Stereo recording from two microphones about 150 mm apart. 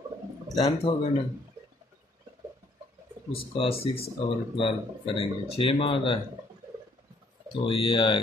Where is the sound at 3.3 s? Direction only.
40° left (ahead or behind).